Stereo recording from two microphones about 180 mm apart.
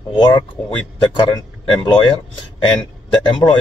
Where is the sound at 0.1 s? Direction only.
25° left (ahead or behind).